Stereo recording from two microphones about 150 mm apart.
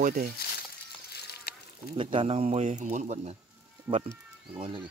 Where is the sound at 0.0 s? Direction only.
90° right.